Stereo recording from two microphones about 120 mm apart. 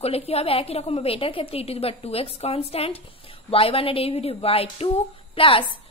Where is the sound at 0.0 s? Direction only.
60° left (ahead or behind).